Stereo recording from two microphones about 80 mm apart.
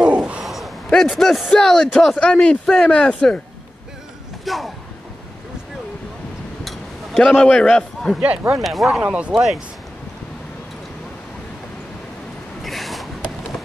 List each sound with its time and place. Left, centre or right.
0.0 s a sound: centre
1.0 s speech: centre
4.5 s speech: centre
6.6 s a sound: centre
7.4 s speech: centre
8.5 s speech: centre
9.0 s speech: centre
9.3 s speech: centre
12.6 s a sound: centre